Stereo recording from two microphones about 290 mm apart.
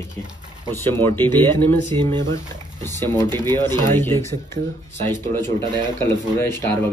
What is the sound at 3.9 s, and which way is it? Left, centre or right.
Speech, centre.